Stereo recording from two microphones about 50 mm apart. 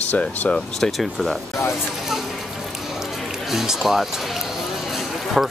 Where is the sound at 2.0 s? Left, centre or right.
Centre.